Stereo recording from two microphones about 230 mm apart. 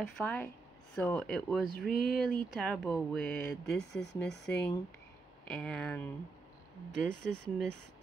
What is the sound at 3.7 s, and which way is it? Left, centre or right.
Speech, left.